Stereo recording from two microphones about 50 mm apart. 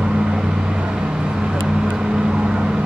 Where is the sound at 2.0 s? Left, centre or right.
Centre.